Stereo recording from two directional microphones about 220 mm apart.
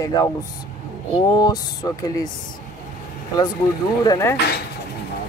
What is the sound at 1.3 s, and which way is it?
Speech, 15° left (ahead or behind).